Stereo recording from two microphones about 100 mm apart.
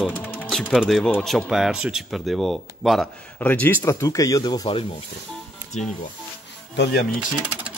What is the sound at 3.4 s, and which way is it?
Speech, 20° left (ahead or behind).